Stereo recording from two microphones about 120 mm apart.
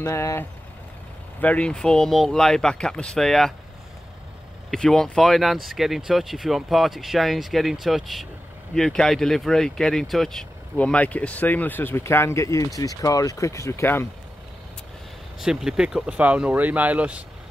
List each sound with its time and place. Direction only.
0.0 s speech: 25° left (ahead or behind)
1.4 s speech: 10° left (ahead or behind)
4.6 s speech: 5° left (ahead or behind); by 14.0 s 20° left (ahead or behind)
15.4 s speech: 5° right (ahead or behind)